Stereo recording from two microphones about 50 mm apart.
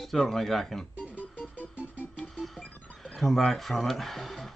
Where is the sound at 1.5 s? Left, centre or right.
Right.